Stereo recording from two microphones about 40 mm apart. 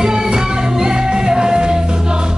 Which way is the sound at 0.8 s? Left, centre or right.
Centre.